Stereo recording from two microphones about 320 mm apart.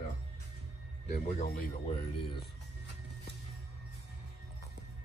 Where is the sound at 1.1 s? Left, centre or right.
Left.